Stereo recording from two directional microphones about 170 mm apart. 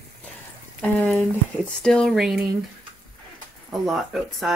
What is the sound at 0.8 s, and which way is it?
Speech, 10° left (ahead or behind).